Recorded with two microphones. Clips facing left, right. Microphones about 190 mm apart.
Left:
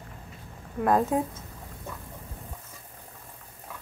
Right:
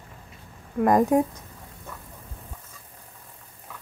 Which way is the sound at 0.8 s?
15° right (ahead or behind).